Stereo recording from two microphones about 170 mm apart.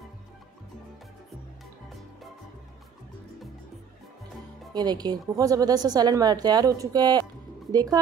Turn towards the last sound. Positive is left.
turn(degrees=-20)  # may be behind; listen again after turning